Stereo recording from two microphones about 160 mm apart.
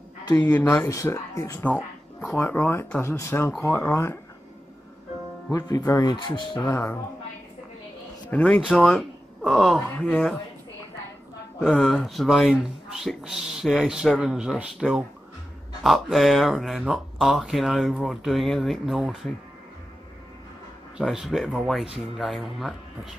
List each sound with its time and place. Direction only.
0.2 s a sound: 25° left (ahead or behind)
0.5 s speech: 15° left (ahead or behind)
5.5 s speech: 25° left (ahead or behind)
8.3 s speech: 10° left (ahead or behind)
11.6 s speech: 5° left (ahead or behind)
21.0 s speech: centre (ahead or behind)